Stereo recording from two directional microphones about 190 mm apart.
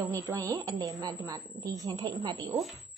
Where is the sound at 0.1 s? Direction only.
15° right (ahead or behind).